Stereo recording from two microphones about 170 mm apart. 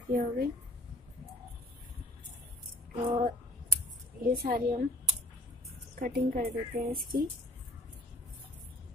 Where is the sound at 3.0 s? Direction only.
35° right (ahead or behind).